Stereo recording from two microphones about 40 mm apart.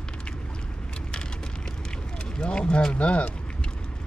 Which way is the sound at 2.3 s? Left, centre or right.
Left.